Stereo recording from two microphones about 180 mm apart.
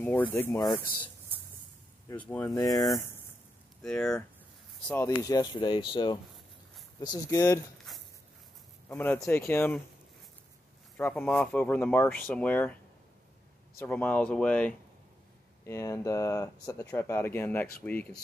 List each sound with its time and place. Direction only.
0.0 s speech: 10° left (ahead or behind)
2.0 s speech: 10° left (ahead or behind)
2.4 s speech: 20° left (ahead or behind)
3.8 s speech: 5° left (ahead or behind)
4.8 s speech: 15° left (ahead or behind)
8.8 s speech: 10° left (ahead or behind)
11.0 s speech: 10° left (ahead or behind)
13.7 s speech: 10° left (ahead or behind)